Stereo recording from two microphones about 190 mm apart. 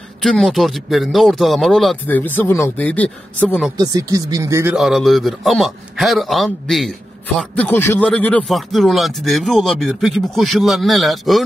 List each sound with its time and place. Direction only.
0.2 s speech: centre (ahead or behind)
3.7 s speech: 20° right (ahead or behind)
4.7 s speech: centre (ahead or behind)